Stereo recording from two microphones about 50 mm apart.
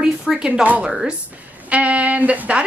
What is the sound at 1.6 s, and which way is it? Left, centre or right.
Speech, right.